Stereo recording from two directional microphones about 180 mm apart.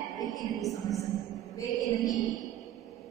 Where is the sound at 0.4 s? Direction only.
Centre (ahead or behind).